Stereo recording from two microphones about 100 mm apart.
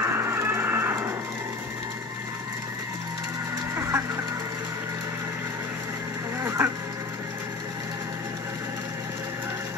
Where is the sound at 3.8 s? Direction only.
25° right (ahead or behind).